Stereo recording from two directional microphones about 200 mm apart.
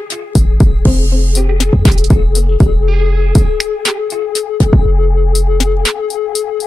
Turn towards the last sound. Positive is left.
turn(degrees=0)  # may be behind; listen again after turning